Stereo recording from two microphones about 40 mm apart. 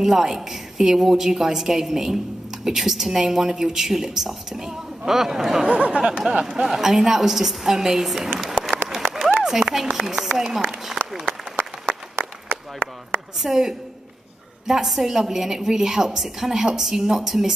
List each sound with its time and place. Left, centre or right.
0.0 s a woman's voice: centre
5.7 s speech: right
6.4 s a woman's voice: centre
8.6 s applause: centre
9.0 s a sound: centre
9.9 s a woman's voice: centre
12.2 s a sound: right
13.4 s a woman's voice: centre
14.9 s a woman's voice: centre